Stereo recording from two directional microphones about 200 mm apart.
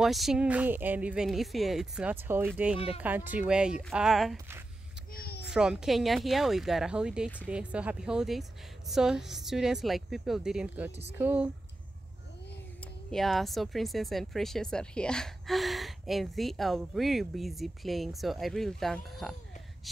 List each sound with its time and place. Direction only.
0.0 s speech: centre (ahead or behind)
5.1 s a sound: 50° left (ahead or behind)
5.5 s speech: 5° right (ahead or behind)
12.8 s speech: centre (ahead or behind)